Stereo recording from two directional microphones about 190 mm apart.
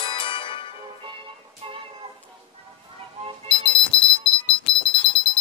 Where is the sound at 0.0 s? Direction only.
25° left (ahead or behind).